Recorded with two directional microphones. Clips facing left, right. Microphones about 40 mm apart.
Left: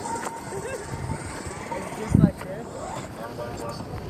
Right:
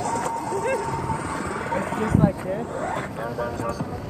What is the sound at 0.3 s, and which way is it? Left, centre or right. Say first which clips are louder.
Vehicle: right 8 dB; right.